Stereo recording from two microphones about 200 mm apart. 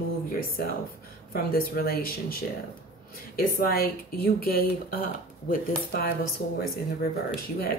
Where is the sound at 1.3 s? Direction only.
50° left (ahead or behind).